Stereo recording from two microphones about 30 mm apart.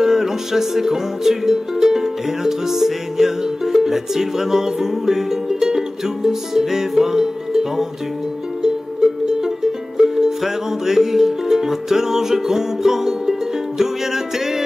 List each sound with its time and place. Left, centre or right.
0.0 s music: centre
9.2 s music: right